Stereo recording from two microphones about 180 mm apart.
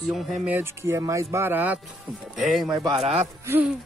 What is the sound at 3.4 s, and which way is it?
Speech, 10° right (ahead or behind).